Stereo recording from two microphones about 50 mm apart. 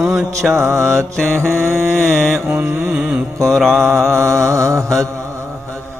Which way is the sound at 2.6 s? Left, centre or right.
Right.